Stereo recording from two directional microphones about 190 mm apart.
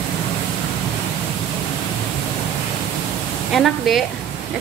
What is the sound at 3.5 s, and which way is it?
Speech, centre (ahead or behind).